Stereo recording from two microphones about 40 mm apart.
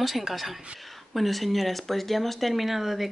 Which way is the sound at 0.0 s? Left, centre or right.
Centre.